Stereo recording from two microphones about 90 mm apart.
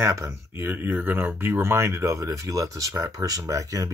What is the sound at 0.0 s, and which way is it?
Speech, 30° right (ahead or behind).